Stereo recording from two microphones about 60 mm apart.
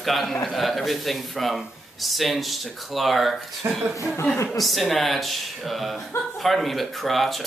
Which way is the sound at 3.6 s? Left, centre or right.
Right.